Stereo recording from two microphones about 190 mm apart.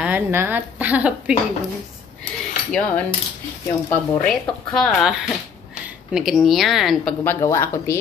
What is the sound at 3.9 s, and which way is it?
Speech, 5° left (ahead or behind).